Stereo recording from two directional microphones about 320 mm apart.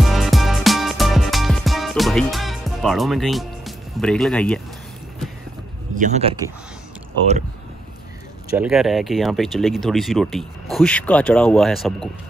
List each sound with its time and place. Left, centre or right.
0.0 s music: centre
5.9 s speech: right
8.5 s speech: centre